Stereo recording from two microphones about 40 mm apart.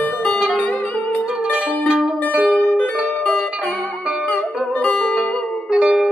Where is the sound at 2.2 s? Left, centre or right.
Right.